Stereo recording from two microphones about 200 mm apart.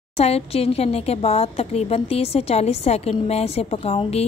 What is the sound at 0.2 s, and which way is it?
A woman's voice, 30° left (ahead or behind).